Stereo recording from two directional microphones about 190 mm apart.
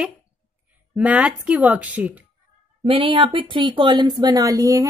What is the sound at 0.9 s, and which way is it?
Speech, 5° right (ahead or behind).